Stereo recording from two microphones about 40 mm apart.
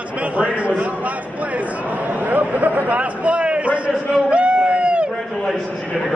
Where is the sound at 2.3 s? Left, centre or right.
Right.